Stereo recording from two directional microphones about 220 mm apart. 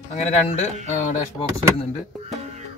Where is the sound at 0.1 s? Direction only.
30° left (ahead or behind).